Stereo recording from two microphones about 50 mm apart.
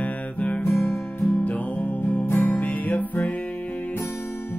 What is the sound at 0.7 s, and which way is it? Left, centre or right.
Music, left.